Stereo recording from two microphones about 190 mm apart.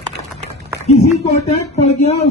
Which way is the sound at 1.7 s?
35° left (ahead or behind).